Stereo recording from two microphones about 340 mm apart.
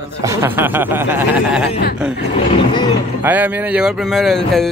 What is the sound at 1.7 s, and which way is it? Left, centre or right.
Speech, left.